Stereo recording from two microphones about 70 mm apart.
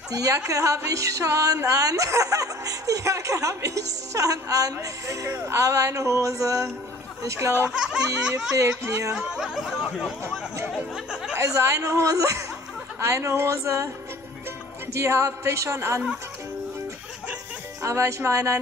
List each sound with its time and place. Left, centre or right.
0.5 s speech: right
7.7 s speech: centre
8.5 s speech: right
9.3 s speech: centre
11.3 s speech: right
15.0 s speech: right
17.8 s speech: right